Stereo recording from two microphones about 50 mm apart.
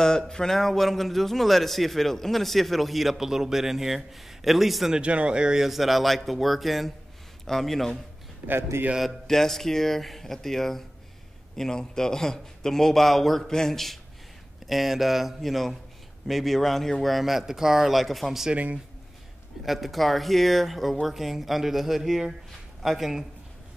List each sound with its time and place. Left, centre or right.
0.3 s a man's voice: centre
4.9 s speech: right
5.6 s a man's voice: centre
8.7 s a man's voice: right
9.3 s a man's voice: centre
18.5 s speech: right
19.6 s a man's voice: centre